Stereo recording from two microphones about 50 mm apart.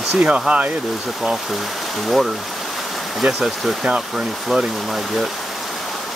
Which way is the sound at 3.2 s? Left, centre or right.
Centre.